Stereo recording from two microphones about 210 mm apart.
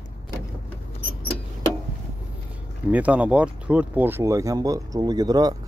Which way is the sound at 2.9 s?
5° right (ahead or behind).